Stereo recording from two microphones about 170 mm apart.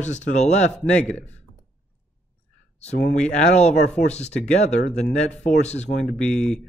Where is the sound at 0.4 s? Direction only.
40° left (ahead or behind).